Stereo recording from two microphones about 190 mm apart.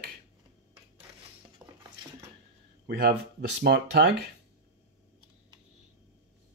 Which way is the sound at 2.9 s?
50° right (ahead or behind).